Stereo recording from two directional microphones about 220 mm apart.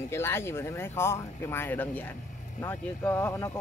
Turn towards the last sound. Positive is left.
turn(degrees=10)  # may be behind; listen again after turning